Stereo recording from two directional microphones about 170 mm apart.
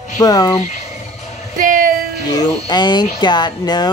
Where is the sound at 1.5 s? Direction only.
55° right (ahead or behind).